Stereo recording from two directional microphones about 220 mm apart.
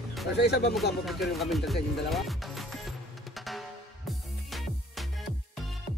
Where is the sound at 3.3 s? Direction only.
Centre (ahead or behind).